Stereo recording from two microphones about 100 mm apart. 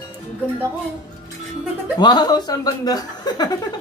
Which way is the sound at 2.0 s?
45° left (ahead or behind).